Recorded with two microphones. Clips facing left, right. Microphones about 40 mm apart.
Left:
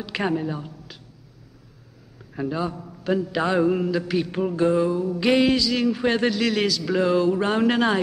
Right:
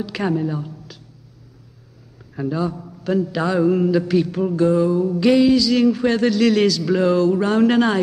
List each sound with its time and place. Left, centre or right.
0.0 s a woman's voice: centre
2.3 s a woman's voice: centre
4.4 s a woman's voice: centre
5.3 s music: left
5.6 s a woman's voice: centre
6.4 s a man's voice: centre
7.2 s a woman's voice: centre